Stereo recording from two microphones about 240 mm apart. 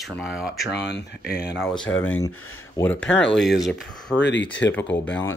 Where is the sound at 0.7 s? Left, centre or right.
Left.